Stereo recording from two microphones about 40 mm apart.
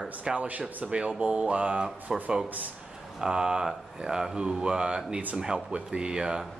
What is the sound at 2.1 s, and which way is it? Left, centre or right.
Speech, centre.